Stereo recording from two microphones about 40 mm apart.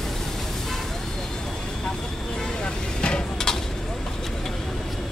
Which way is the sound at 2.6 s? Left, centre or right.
Left.